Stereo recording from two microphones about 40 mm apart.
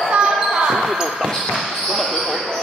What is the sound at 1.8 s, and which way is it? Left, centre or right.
Speech, centre.